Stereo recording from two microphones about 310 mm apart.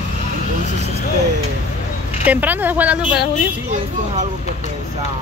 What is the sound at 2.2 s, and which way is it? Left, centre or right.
Speech, centre.